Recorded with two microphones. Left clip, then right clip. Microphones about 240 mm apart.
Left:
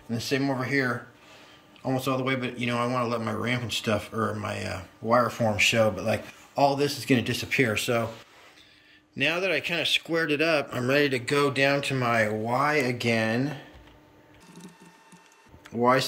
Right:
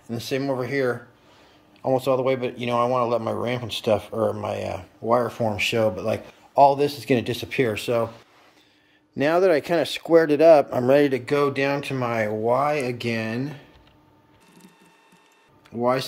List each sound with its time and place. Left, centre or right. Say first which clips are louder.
0.1 s speech: right 2 dB; centre
9.1 s speech: right 7 dB; right; by 13.6 s centre
15.8 s speech: even; centre